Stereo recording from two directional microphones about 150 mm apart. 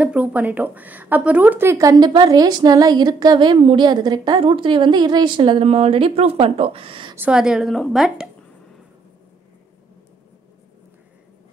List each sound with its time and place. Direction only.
0.0 s a woman's voice: 10° right (ahead or behind); by 7.2 s 35° right (ahead or behind)
7.2 s a woman's voice: 5° right (ahead or behind)